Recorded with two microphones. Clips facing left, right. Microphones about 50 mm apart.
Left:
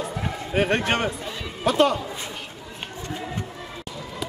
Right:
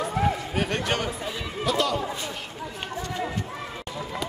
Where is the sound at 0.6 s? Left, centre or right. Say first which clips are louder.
Left 4 dB; left.